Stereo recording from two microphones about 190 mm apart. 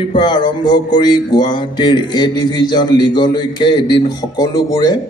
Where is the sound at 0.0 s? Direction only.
25° left (ahead or behind).